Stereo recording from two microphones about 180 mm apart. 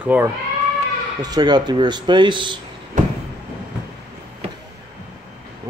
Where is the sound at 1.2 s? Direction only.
20° right (ahead or behind).